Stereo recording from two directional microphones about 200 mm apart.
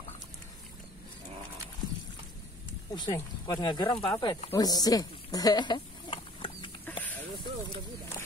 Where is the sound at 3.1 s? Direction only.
20° left (ahead or behind).